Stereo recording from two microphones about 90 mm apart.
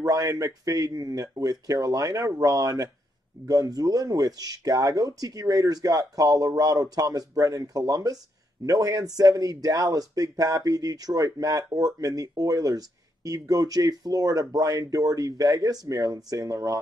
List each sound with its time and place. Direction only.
0.0 s speech: 40° right (ahead or behind)